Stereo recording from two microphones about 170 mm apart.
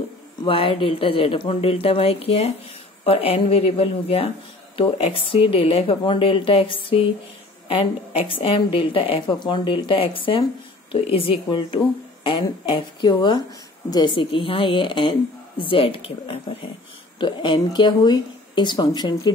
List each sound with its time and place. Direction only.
0.4 s a woman's voice: 30° left (ahead or behind)